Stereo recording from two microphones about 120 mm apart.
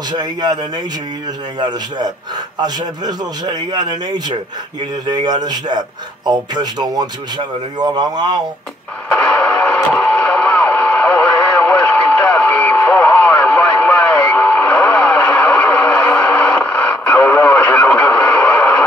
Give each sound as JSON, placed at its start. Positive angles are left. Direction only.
{"t": 0.1, "sound": "speech", "side_deg": -35}
{"t": 1.6, "sound": "speech", "side_deg": -35}
{"t": 5.0, "sound": "speech", "side_deg": -40}
{"t": 9.4, "sound": "radio", "side_deg": 15}